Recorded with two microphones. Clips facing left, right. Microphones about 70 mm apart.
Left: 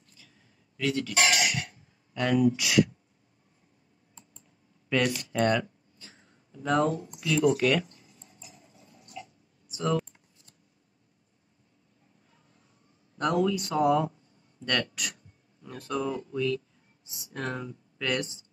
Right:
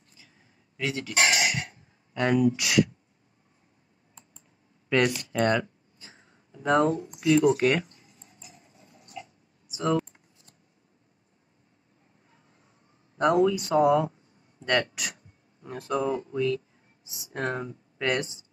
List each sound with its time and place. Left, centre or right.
0.8 s speech: right
1.1 s cutlery: right
2.1 s speech: right
2.5 s speech: right
4.8 s speech: right
9.7 s computer keyboard: centre
13.2 s speech: right
15.6 s speech: right
16.3 s speech: right
17.3 s speech: right
17.9 s speech: right